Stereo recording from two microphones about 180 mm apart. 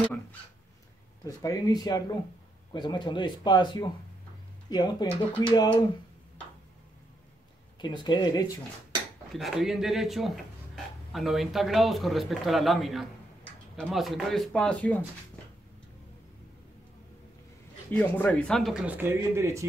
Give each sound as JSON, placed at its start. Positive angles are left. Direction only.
{"t": 0.0, "sound": "speech", "side_deg": 10}
{"t": 1.2, "sound": "speech", "side_deg": 20}
{"t": 7.8, "sound": "speech", "side_deg": 25}
{"t": 9.3, "sound": "a man's voice", "side_deg": 0}
{"t": 17.9, "sound": "speech", "side_deg": 10}